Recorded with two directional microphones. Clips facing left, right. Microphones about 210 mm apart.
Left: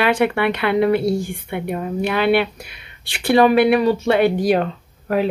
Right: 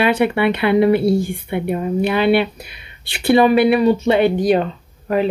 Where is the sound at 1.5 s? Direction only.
Centre (ahead or behind).